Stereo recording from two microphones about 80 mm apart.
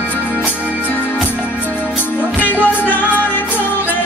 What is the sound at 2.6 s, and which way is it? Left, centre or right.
Music, left.